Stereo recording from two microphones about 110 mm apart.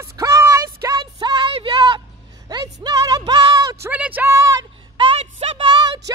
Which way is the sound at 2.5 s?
40° right (ahead or behind).